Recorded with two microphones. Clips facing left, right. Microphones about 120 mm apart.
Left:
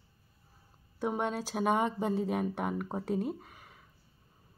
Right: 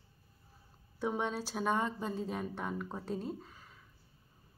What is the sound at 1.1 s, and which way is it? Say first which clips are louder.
Speech: left 3 dB; 50° left (ahead or behind).